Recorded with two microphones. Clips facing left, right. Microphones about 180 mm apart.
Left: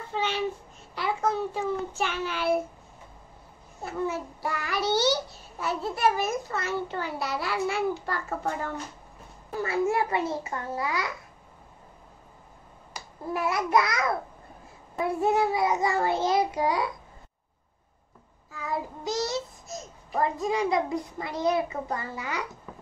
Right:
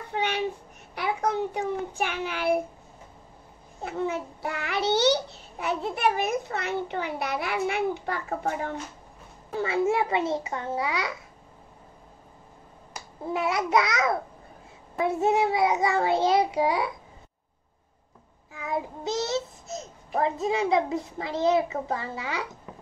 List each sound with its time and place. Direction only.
0.1 s a sound: 15° right (ahead or behind)
1.3 s child singing: 20° right (ahead or behind)
3.8 s a child's voice: 20° right (ahead or behind)
13.3 s a child's voice: 20° right (ahead or behind)
18.5 s child singing: 20° right (ahead or behind)
20.2 s a child's voice: 25° right (ahead or behind)